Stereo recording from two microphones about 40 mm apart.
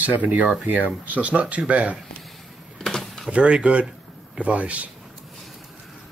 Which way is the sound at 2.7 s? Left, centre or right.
Centre.